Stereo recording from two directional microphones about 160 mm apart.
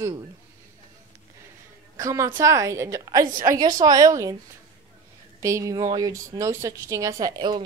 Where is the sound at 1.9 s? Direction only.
20° right (ahead or behind).